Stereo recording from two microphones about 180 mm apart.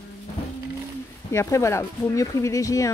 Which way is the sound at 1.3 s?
15° left (ahead or behind).